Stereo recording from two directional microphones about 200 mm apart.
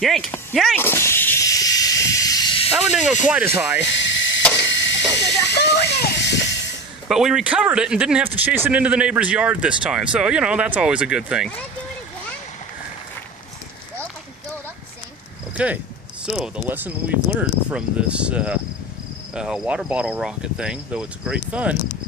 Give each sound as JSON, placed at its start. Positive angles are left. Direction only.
{"t": 0.0, "sound": "speech", "side_deg": 0}
{"t": 0.8, "sound": "snake", "side_deg": 10}
{"t": 2.7, "sound": "speech", "side_deg": -5}
{"t": 3.8, "sound": "mechanisms", "side_deg": 65}
{"t": 4.6, "sound": "hiss", "side_deg": 65}
{"t": 7.1, "sound": "speech", "side_deg": -5}
{"t": 15.5, "sound": "speech", "side_deg": -5}